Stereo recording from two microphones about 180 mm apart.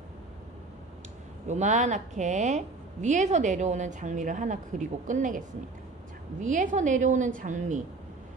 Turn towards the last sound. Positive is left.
turn(degrees=-45)  # may be behind; listen again after turning